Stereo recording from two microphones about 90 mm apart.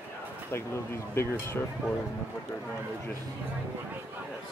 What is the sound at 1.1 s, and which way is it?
Speech, 30° left (ahead or behind).